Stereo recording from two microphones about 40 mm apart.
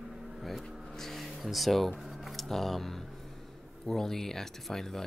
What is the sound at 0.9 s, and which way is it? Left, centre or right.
Speech, centre.